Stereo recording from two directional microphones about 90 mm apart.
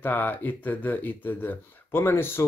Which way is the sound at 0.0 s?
20° left (ahead or behind).